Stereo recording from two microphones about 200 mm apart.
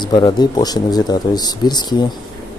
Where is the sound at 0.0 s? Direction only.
20° left (ahead or behind).